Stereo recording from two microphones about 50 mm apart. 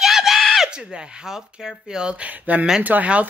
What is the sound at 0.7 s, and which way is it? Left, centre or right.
Speech, centre.